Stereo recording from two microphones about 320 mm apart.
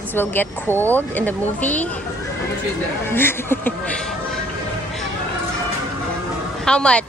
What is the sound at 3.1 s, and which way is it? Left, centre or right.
Speech, centre.